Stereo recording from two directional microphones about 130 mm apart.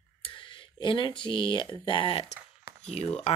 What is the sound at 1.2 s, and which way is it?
Speech, 40° left (ahead or behind).